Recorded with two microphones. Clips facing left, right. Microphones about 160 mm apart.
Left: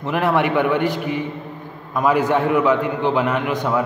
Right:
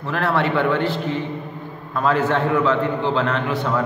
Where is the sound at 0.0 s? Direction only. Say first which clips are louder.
Left 2 dB; 15° left (ahead or behind).